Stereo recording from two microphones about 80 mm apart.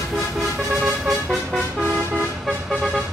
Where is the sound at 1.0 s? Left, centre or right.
Centre.